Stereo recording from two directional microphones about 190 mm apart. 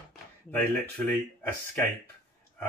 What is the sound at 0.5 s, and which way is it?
Speech, 10° left (ahead or behind).